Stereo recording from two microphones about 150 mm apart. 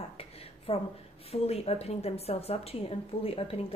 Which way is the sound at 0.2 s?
40° left (ahead or behind).